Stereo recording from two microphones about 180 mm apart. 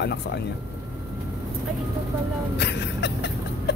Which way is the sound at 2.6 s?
70° left (ahead or behind).